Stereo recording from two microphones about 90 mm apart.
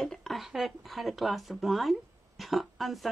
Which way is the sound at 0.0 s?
5° left (ahead or behind).